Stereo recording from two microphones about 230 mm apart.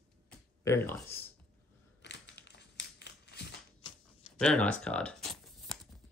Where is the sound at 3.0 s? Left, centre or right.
Left.